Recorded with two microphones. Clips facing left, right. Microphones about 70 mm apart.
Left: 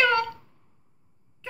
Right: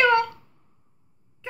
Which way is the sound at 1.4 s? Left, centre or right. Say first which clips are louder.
Right 3 dB; centre.